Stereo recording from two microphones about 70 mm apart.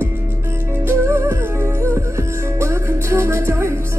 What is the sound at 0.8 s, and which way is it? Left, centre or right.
Music, right.